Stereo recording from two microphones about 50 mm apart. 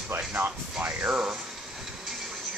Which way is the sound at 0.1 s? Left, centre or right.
Right.